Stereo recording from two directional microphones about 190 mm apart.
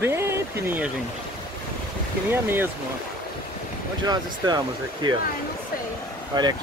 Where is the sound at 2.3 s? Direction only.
10° right (ahead or behind).